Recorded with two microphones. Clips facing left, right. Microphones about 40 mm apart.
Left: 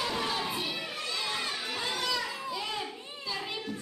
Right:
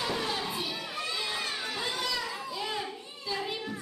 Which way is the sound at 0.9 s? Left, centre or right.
Centre.